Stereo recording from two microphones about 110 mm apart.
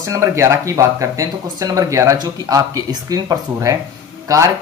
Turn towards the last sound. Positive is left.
turn(degrees=-30)  # may be behind; listen again after turning